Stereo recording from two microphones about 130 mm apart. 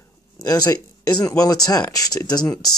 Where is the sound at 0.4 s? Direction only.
30° left (ahead or behind).